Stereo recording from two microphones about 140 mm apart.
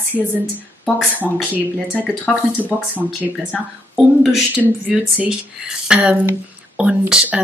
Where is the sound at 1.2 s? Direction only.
10° right (ahead or behind).